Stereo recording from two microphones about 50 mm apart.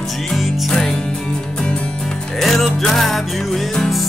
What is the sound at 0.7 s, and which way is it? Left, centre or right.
Music, centre.